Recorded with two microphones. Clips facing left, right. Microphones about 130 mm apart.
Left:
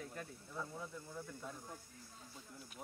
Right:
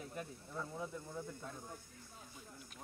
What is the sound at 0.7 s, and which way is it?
Speech, 15° right (ahead or behind).